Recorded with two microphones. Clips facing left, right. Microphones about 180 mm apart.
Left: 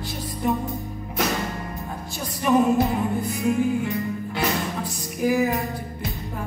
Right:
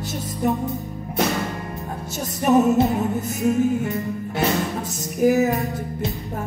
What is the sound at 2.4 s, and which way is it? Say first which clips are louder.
Music: right 3 dB; 45° right (ahead or behind).